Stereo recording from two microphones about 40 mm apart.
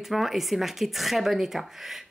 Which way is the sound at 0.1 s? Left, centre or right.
Centre.